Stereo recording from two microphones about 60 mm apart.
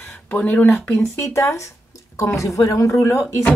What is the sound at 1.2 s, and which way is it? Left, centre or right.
Speech, left.